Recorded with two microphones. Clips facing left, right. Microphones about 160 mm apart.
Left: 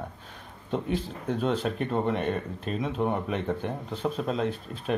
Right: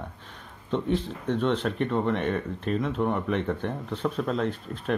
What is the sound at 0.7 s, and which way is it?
Speech, 5° left (ahead or behind).